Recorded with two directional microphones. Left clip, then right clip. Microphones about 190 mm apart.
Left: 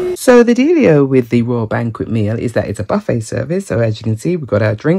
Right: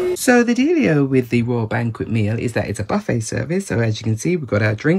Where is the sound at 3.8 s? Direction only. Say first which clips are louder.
Left 4 dB; 60° left (ahead or behind).